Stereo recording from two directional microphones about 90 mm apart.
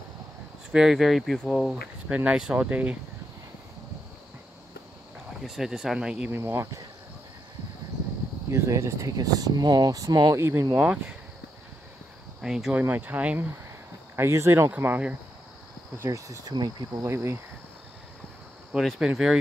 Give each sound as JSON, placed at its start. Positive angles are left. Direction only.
{"t": 0.7, "sound": "speech", "side_deg": -5}
{"t": 5.4, "sound": "speech", "side_deg": -5}
{"t": 6.3, "sound": "speech", "side_deg": -25}
{"t": 8.5, "sound": "speech", "side_deg": -35}
{"t": 10.4, "sound": "speech", "side_deg": -30}
{"t": 10.8, "sound": "speech", "side_deg": -10}
{"t": 12.4, "sound": "speech", "side_deg": -5}
{"t": 12.7, "sound": "speech", "side_deg": -20}
{"t": 14.1, "sound": "speech", "side_deg": -30}
{"t": 14.7, "sound": "speech", "side_deg": -20}
{"t": 16.0, "sound": "speech", "side_deg": -40}
{"t": 16.5, "sound": "speech", "side_deg": -50}
{"t": 17.0, "sound": "speech", "side_deg": -30}
{"t": 18.9, "sound": "speech", "side_deg": -10}